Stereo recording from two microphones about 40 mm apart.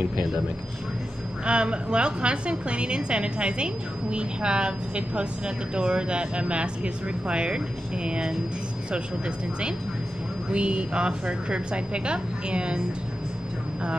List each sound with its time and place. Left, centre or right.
1.4 s a woman's voice: right
10.5 s a woman's voice: right